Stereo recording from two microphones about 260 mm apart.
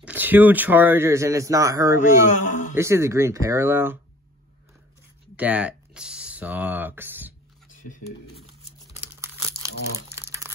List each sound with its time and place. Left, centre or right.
0.0 s speech: centre
2.2 s a man's voice: left
2.7 s speech: centre
5.3 s a sound: centre
9.2 s crumpling: centre